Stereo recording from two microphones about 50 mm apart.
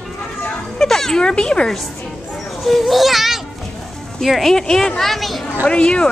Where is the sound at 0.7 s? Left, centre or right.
Centre.